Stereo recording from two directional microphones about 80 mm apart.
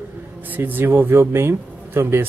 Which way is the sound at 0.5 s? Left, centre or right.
Right.